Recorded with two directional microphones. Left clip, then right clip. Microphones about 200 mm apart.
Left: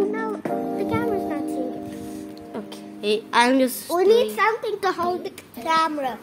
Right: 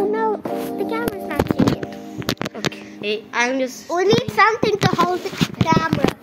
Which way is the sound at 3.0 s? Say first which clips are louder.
Left 2 dB; 60° left (ahead or behind).